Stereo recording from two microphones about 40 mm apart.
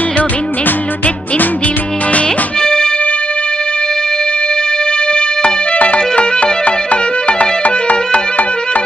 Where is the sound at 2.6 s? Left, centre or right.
Centre.